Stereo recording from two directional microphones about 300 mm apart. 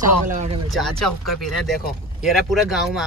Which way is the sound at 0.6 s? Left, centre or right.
Centre.